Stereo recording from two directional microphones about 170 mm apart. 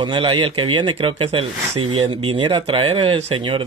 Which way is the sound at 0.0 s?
30° right (ahead or behind).